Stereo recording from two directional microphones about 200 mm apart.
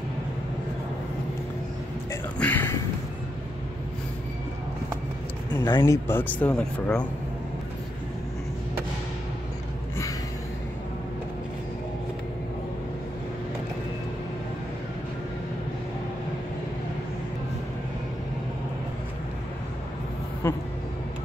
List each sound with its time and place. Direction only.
2.3 s speech: 10° left (ahead or behind)
5.5 s speech: 20° left (ahead or behind)
20.4 s vehicle: 15° left (ahead or behind)